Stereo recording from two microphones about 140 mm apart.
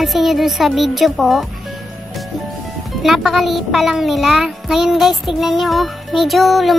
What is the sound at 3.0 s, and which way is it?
A child's voice, centre (ahead or behind).